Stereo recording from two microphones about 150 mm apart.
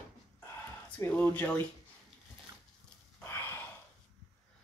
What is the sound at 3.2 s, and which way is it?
Gasp, 15° left (ahead or behind).